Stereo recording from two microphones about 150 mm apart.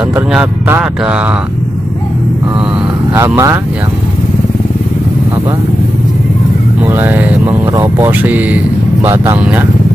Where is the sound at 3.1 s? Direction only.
15° right (ahead or behind).